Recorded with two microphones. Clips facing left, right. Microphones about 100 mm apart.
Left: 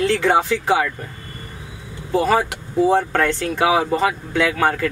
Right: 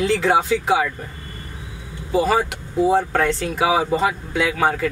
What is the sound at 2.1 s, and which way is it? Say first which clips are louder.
Speech: left 1 dB; centre (ahead or behind).